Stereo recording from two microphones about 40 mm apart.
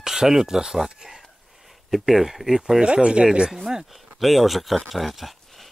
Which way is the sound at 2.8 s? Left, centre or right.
Right.